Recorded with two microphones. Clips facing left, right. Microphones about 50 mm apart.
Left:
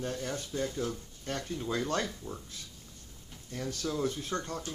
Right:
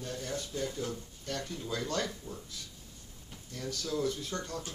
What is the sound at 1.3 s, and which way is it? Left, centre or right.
Speech, left.